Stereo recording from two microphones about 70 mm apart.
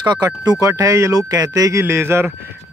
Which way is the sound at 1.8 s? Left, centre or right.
Right.